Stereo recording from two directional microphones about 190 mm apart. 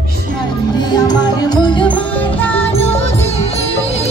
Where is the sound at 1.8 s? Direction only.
5° left (ahead or behind).